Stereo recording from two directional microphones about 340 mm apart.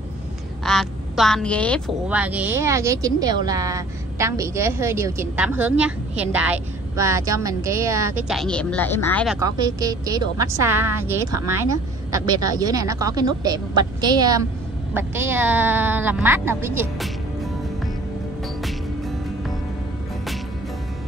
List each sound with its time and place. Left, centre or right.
0.7 s speech: centre
9.4 s speech: centre
18.6 s music: centre